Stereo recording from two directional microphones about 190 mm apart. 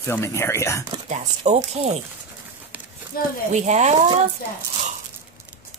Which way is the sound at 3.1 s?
50° left (ahead or behind).